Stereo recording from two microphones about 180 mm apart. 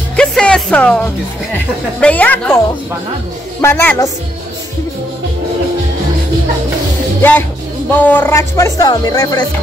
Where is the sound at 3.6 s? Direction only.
10° left (ahead or behind).